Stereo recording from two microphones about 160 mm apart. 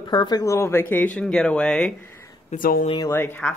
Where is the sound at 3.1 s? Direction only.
10° left (ahead or behind).